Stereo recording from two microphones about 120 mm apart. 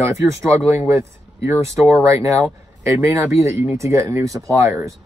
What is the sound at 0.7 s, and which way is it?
Speech, 20° right (ahead or behind).